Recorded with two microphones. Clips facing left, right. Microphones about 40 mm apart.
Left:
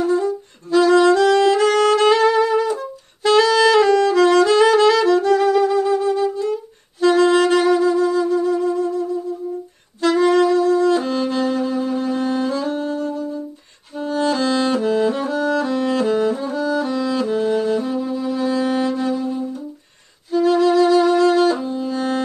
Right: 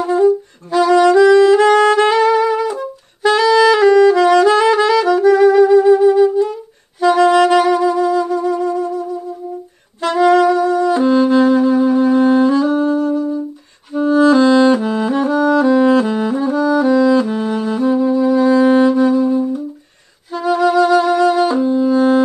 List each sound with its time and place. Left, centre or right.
0.0 s saxophone: right
1.1 s saxophone: centre
1.5 s music: centre
3.9 s saxophone: centre
5.1 s saxophone: centre
7.3 s wind instrument: right; by 8.8 s centre
10.1 s saxophone: centre
10.7 s music: right
14.3 s saxophone: right
16.6 s saxophone: centre
18.5 s music: centre